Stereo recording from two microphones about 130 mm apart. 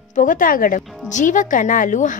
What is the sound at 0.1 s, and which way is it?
Speech, 85° left.